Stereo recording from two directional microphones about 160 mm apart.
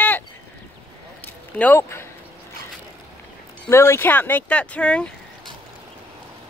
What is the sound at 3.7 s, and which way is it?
Speech, 15° left (ahead or behind).